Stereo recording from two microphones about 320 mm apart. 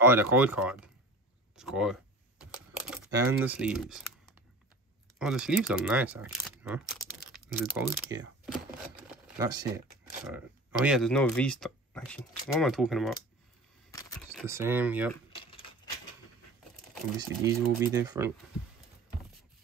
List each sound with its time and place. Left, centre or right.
0.0 s speech: centre
1.6 s a sound: centre
2.9 s speech: centre
14.3 s speech: centre
15.3 s keys jangling: centre
17.4 s speech: centre